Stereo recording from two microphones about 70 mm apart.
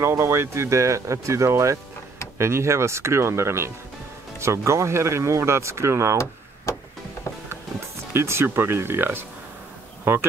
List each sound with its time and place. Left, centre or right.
0.2 s speech: right
6.1 s a sound: left
8.1 s speech: right